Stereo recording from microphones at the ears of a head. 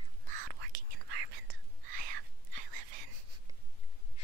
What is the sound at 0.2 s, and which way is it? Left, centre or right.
Whispering, right.